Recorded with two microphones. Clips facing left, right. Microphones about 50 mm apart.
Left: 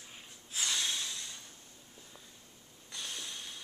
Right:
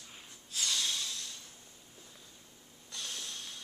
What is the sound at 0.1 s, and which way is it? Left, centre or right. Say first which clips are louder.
Snort: even; centre.